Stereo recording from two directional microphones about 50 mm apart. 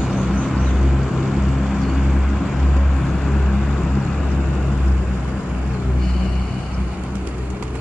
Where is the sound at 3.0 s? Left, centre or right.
Centre.